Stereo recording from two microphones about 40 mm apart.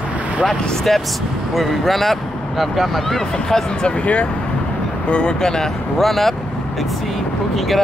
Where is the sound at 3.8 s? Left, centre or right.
Left.